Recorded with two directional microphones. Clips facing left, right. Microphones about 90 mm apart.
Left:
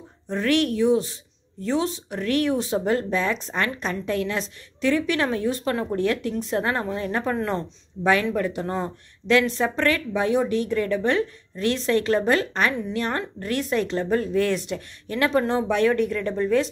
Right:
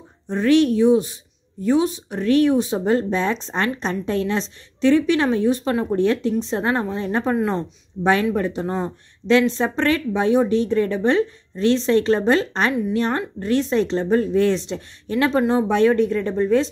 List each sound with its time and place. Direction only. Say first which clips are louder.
0.3 s speech: right 6 dB; 20° right (ahead or behind)